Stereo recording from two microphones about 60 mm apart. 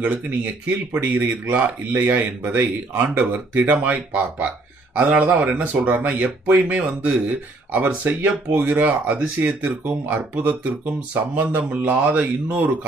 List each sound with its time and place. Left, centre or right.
0.0 s speech: right
9.0 s speech: right
9.6 s speech: right